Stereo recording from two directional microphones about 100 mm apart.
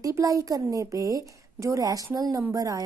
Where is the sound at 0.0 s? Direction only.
35° right (ahead or behind).